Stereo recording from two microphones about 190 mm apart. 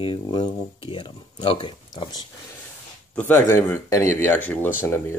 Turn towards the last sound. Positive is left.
turn(degrees=10)  # may be behind; listen again after turning